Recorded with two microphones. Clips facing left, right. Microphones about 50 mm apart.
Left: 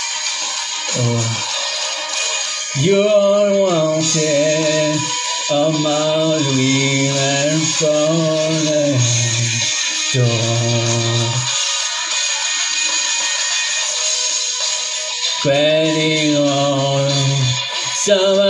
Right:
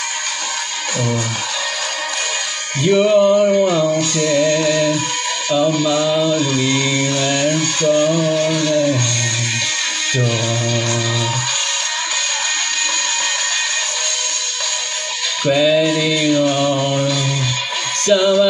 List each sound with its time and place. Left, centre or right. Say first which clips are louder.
2.8 s music: even; centre
5.9 s music: even; centre
6.3 s mantra: left 1 dB; centre
8.2 s a sound: even; centre
15.5 s music: even; centre
16.3 s chant: right 1 dB; centre
16.6 s music: left 1 dB; centre
18.0 s music: even; centre